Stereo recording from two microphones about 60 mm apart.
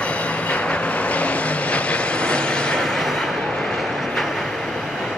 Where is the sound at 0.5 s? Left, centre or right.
Left.